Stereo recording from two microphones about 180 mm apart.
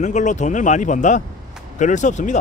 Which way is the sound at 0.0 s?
40° left (ahead or behind).